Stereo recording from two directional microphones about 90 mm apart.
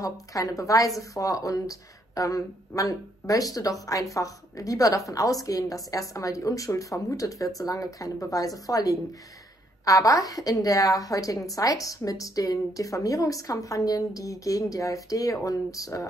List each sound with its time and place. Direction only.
0.0 s a woman's voice: 40° left (ahead or behind)